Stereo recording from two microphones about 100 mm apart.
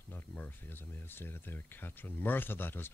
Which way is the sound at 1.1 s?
20° left (ahead or behind).